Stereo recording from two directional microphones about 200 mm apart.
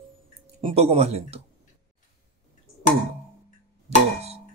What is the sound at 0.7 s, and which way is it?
Speech, 30° right (ahead or behind).